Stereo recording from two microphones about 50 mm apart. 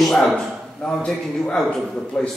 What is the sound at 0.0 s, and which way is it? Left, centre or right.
A man's voice, centre.